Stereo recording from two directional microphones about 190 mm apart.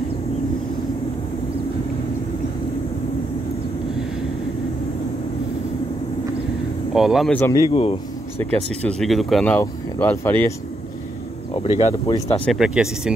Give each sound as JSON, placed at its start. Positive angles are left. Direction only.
{"t": 6.9, "sound": "speech", "side_deg": 0}
{"t": 7.3, "sound": "speech", "side_deg": 10}
{"t": 7.7, "sound": "speech", "side_deg": 30}
{"t": 8.4, "sound": "speech", "side_deg": 5}
{"t": 11.5, "sound": "speech", "side_deg": 30}
{"t": 12.4, "sound": "speech", "side_deg": -5}